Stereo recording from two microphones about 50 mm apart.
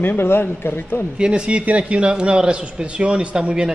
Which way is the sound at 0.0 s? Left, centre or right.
Left.